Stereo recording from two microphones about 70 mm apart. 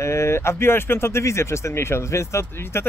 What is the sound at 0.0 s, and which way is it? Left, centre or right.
Speech, left.